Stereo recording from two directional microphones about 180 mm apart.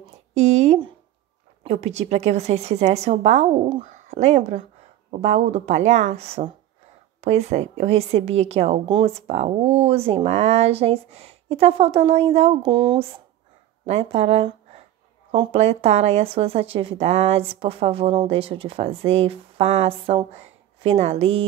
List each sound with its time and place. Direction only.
0.3 s a sound: 40° right (ahead or behind)
1.6 s speech: 40° right (ahead or behind)
13.8 s a woman's voice: 35° right (ahead or behind)